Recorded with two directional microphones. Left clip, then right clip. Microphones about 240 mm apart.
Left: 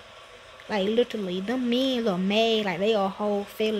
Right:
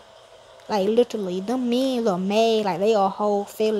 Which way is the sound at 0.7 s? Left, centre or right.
Right.